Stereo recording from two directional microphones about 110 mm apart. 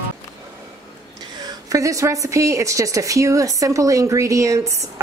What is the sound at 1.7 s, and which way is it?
A woman's voice, 30° right (ahead or behind).